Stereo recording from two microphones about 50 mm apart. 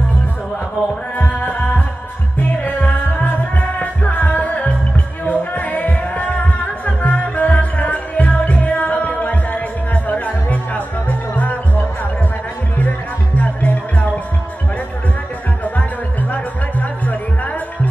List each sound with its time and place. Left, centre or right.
1.1 s music: left
15.6 s music: left